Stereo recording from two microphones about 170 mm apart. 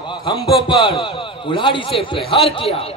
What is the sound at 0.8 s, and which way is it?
A man's voice, 30° left (ahead or behind).